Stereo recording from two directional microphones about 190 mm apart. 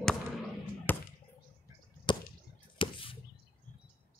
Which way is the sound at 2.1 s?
25° left (ahead or behind).